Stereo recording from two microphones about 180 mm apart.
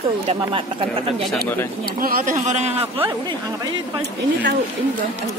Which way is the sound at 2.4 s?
40° right (ahead or behind).